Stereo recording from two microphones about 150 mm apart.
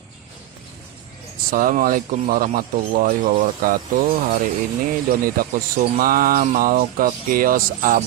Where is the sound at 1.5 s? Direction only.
65° right (ahead or behind).